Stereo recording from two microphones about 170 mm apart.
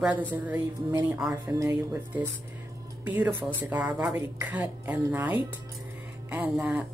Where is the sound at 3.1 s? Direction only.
10° right (ahead or behind).